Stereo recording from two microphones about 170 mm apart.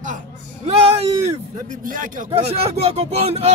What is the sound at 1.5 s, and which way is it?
Speech, 50° right (ahead or behind).